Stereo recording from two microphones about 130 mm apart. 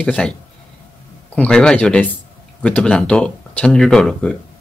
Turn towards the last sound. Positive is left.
turn(degrees=5)  # may be behind; listen again after turning